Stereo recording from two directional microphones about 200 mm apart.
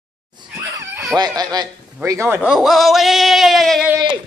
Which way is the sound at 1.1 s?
20° right (ahead or behind).